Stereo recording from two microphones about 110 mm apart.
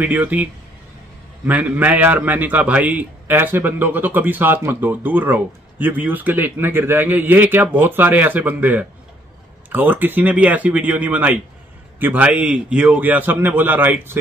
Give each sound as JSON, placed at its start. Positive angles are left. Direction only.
{"t": 0.0, "sound": "a man's voice", "side_deg": -15}